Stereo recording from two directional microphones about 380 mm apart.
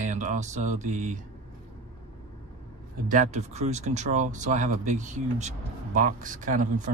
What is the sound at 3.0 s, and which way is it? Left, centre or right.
Speech, centre.